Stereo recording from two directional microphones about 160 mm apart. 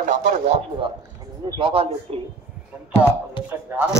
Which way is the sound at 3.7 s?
15° right (ahead or behind).